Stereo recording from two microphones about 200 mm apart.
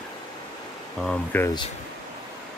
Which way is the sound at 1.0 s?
5° left (ahead or behind).